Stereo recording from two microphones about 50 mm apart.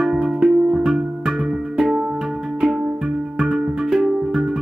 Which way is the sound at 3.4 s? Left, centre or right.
Centre.